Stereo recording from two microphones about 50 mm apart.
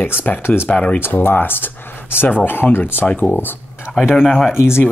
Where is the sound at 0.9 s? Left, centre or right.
Left.